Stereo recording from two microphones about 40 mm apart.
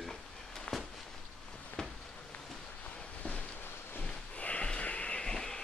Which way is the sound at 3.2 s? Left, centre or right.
Left.